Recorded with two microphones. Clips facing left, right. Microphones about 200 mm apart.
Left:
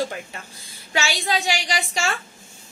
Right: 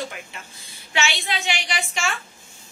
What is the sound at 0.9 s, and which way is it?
A woman's voice, 40° left (ahead or behind).